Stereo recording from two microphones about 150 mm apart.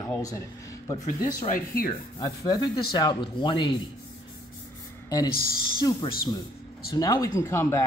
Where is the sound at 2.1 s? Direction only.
25° left (ahead or behind).